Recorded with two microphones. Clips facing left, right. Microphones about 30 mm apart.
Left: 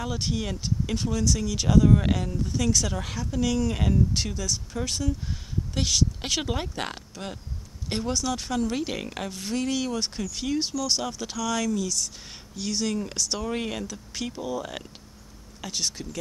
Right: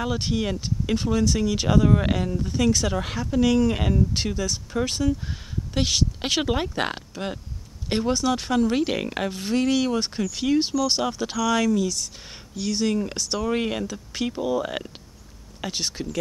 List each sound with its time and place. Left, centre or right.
0.0 s speech: centre